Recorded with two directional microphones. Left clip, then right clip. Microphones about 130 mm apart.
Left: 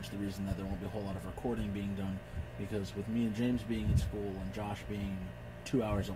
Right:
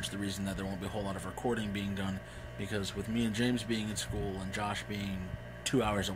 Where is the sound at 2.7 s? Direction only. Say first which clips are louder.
Right 2 dB; centre (ahead or behind).